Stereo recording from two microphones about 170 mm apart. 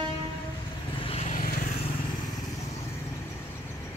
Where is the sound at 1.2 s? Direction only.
50° left (ahead or behind).